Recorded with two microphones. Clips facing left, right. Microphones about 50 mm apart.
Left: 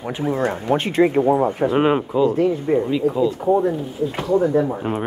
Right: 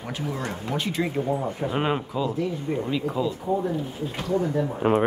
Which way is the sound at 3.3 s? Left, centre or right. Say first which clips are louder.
Left 8 dB; left.